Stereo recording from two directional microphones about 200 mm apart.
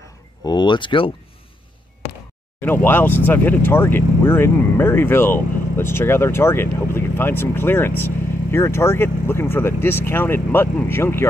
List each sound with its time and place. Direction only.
0.5 s speech: 25° left (ahead or behind)
2.6 s speech: 10° left (ahead or behind)